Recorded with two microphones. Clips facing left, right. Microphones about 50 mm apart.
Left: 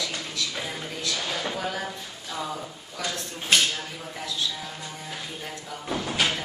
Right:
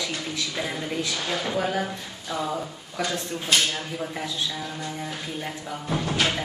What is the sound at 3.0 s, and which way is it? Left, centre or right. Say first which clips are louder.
A woman's voice: right 4 dB; right.